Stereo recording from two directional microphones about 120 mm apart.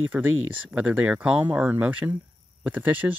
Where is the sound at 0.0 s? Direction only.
15° right (ahead or behind).